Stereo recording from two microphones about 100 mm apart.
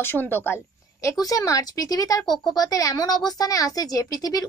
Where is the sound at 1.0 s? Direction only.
35° left (ahead or behind).